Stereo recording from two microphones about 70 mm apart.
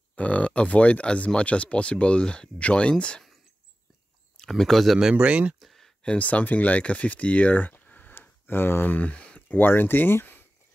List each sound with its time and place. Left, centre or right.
0.1 s speech: centre
4.4 s speech: centre
5.1 s speech: centre
5.6 s a sound: centre
6.0 s speech: centre
9.6 s speech: left